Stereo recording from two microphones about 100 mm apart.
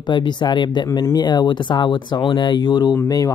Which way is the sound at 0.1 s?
50° left (ahead or behind).